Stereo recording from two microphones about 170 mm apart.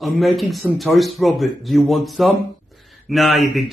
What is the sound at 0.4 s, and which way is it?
A man's voice, centre (ahead or behind).